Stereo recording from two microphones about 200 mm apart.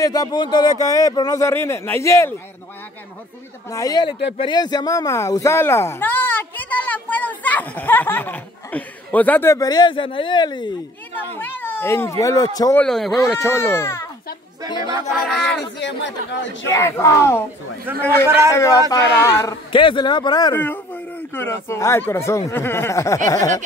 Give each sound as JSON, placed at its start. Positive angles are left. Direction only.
{"t": 0.0, "sound": "speech", "side_deg": 20}
{"t": 3.7, "sound": "speech", "side_deg": 20}
{"t": 11.1, "sound": "speech", "side_deg": 10}
{"t": 12.8, "sound": "speech", "side_deg": 0}
{"t": 13.5, "sound": "speech", "side_deg": 10}
{"t": 14.8, "sound": "speech", "side_deg": -15}
{"t": 15.0, "sound": "speech", "side_deg": 0}
{"t": 15.8, "sound": "speech", "side_deg": 60}
{"t": 16.6, "sound": "speech", "side_deg": 15}
{"t": 17.9, "sound": "speech", "side_deg": -10}
{"t": 18.5, "sound": "speech", "side_deg": 15}